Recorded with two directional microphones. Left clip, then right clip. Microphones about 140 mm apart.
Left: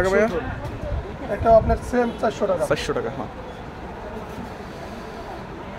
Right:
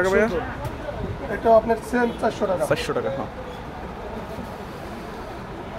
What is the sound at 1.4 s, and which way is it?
Speech, 25° left (ahead or behind).